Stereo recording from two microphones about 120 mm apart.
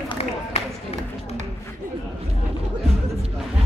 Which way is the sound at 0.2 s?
60° left (ahead or behind).